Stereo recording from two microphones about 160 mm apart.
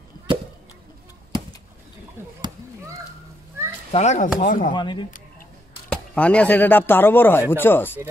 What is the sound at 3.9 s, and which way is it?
Speech, 45° left (ahead or behind).